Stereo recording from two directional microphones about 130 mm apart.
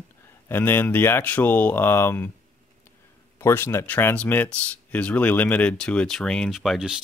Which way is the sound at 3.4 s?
20° left (ahead or behind).